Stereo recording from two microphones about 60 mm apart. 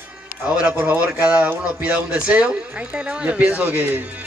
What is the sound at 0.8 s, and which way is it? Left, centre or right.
Speech, right.